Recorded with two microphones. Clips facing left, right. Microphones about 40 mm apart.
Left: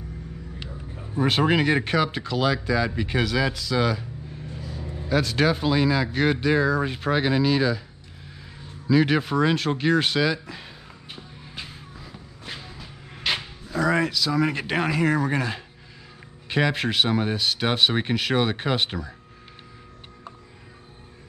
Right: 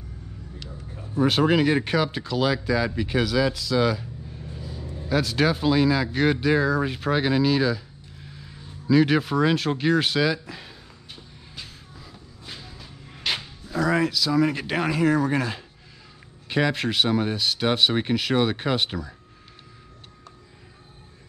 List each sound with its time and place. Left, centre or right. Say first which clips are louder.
1.1 s speech: right 1 dB; centre
11.1 s vehicle: left 4 dB; left
12.6 s a sound: left 2 dB; centre
13.7 s speech: even; centre